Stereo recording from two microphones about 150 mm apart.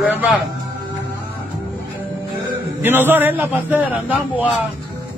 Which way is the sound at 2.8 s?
15° right (ahead or behind).